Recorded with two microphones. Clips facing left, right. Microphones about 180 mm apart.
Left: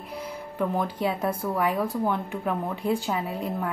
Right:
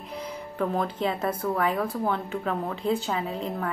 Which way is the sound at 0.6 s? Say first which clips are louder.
Even; 10° left (ahead or behind).